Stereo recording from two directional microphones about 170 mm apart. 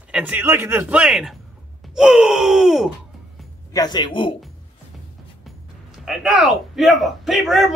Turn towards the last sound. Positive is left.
turn(degrees=0)  # may be behind; listen again after turning